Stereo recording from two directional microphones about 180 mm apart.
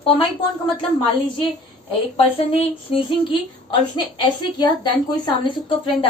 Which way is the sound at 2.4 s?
30° left (ahead or behind).